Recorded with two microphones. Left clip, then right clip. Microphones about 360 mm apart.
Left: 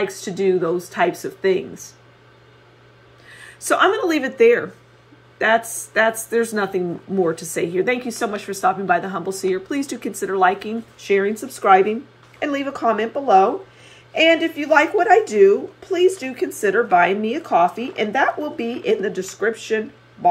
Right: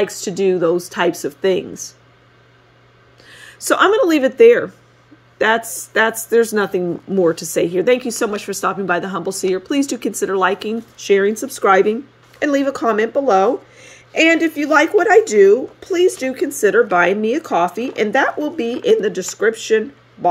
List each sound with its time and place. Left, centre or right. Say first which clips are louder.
0.5 s speech: right 3 dB; right
3.5 s speech: right 4 dB; right
5.7 s speech: right 2 dB; right